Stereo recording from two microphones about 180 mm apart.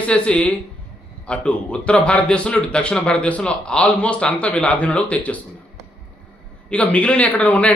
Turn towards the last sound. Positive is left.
turn(degrees=10)  # may be behind; listen again after turning